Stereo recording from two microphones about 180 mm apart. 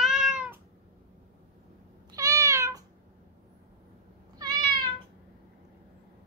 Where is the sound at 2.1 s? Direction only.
20° right (ahead or behind).